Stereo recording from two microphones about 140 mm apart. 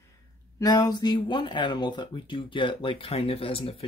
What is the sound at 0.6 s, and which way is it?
Speech, 30° left (ahead or behind).